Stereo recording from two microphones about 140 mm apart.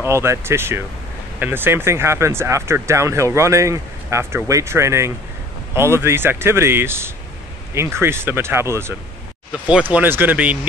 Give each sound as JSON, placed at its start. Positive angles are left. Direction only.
{"t": 0.0, "sound": "speech", "side_deg": -20}